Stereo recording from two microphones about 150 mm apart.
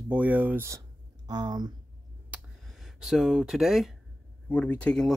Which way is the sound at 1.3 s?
25° right (ahead or behind).